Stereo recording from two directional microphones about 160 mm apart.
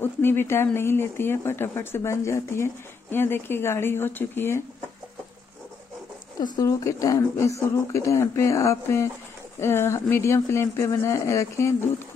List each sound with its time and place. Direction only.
0.0 s speech: 15° left (ahead or behind)
6.4 s speech: 25° left (ahead or behind)